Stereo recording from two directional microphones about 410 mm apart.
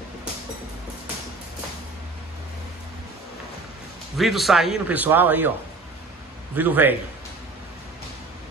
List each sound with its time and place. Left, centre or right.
4.2 s a man's voice: centre
6.5 s a man's voice: centre